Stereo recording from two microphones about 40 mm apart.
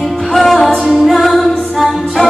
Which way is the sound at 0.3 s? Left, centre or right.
Centre.